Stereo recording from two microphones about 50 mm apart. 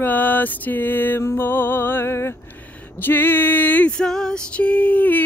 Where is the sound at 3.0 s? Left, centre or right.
Left.